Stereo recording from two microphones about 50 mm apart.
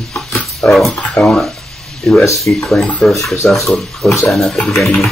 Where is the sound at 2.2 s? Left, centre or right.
Left.